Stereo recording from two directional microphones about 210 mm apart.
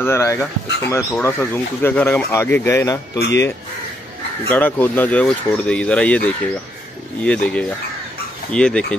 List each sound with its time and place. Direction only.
0.0 s speech: 10° left (ahead or behind)
3.2 s speech: 55° left (ahead or behind)
4.5 s speech: 10° left (ahead or behind)